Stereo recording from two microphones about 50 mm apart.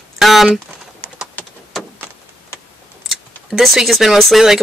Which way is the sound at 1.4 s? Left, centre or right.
Left.